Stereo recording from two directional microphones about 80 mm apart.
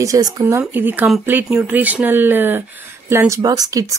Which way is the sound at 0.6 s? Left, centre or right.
Right.